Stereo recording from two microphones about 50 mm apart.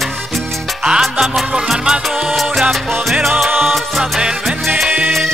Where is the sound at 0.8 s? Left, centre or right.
Centre.